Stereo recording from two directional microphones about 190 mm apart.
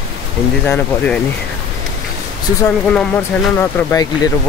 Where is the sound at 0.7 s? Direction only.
10° left (ahead or behind).